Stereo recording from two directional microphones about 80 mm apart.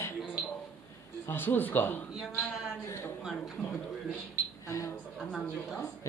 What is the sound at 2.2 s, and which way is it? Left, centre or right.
Speech, centre.